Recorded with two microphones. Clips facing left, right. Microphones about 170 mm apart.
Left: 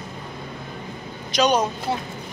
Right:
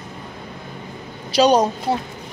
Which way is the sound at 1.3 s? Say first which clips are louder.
Right 5 dB; 35° right (ahead or behind).